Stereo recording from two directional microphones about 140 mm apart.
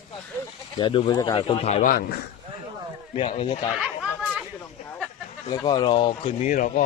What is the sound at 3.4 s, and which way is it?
Speech, 40° left (ahead or behind).